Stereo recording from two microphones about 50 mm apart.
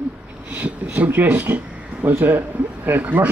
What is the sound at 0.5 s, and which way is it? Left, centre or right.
Speech, right.